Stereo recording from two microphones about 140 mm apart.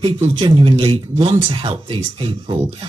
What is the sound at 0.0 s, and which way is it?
Speech, 35° right (ahead or behind).